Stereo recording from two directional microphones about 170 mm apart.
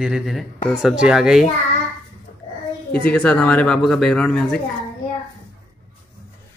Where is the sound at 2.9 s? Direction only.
10° left (ahead or behind).